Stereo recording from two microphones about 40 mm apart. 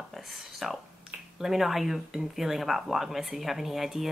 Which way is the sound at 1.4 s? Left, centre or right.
Centre.